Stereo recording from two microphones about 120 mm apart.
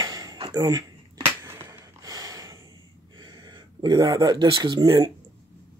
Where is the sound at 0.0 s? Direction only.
35° right (ahead or behind).